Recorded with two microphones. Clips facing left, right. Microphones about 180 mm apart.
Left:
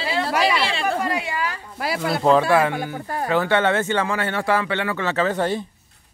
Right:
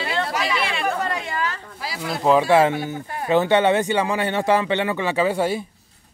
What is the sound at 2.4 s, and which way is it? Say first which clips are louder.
Speech: right 2 dB; 20° right (ahead or behind).